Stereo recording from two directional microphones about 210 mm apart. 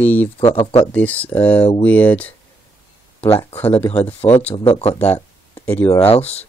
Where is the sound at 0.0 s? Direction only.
10° left (ahead or behind).